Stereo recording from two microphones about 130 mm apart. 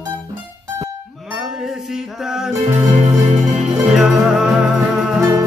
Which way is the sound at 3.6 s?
5° right (ahead or behind).